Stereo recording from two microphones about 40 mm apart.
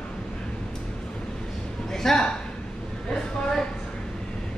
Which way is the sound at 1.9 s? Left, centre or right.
Centre.